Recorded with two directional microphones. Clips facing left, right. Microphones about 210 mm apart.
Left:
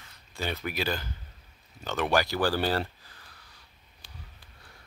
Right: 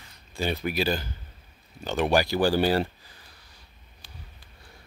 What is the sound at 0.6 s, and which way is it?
Speech, 30° right (ahead or behind).